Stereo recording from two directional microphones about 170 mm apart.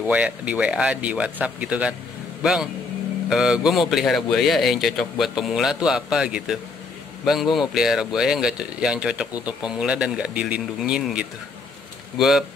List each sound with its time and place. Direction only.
0.0 s speech: 10° right (ahead or behind)
7.7 s speech: centre (ahead or behind)